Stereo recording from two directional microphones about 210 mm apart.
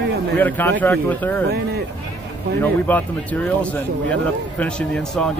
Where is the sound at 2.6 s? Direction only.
10° left (ahead or behind).